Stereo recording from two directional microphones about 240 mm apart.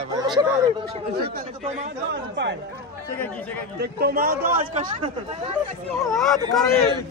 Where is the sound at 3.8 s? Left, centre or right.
Right.